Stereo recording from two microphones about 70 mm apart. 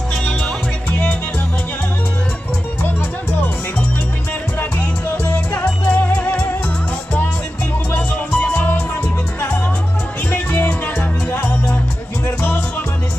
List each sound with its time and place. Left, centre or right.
0.1 s music: centre
4.6 s music: left
7.9 s music: left
10.3 s music: left